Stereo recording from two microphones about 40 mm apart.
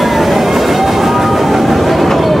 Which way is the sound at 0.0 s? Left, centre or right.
Centre.